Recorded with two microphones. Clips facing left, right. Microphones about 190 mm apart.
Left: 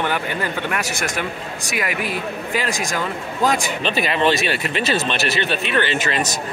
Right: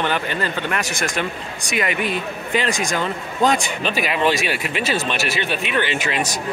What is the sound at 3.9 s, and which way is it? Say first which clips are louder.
Speech: left 1 dB; 10° right (ahead or behind).